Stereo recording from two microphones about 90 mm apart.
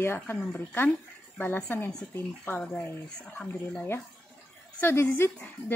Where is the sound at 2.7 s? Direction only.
10° left (ahead or behind).